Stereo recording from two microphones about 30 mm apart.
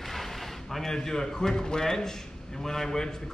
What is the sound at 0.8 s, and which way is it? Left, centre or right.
A man's voice, centre.